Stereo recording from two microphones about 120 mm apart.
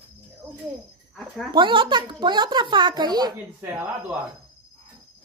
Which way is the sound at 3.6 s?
15° right (ahead or behind).